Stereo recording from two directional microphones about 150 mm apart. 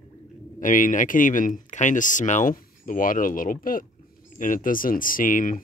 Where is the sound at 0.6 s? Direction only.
60° left (ahead or behind).